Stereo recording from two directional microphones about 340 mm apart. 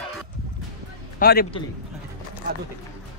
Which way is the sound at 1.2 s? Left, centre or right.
Left.